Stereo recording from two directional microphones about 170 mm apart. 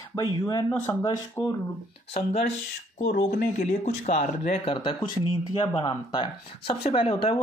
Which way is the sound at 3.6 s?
45° left (ahead or behind).